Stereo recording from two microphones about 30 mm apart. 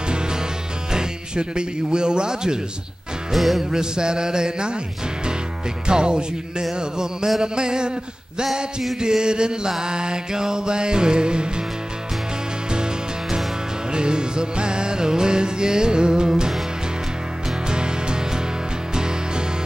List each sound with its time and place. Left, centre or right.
0.9 s speech: right
3.3 s music: centre
3.7 s music: right
5.9 s music: right
9.0 s music: right
12.7 s music: right
17.6 s music: right